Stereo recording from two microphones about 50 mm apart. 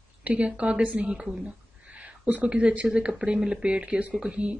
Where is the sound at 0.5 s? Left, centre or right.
Right.